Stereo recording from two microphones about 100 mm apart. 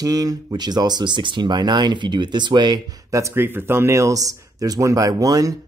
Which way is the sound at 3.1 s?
25° right (ahead or behind).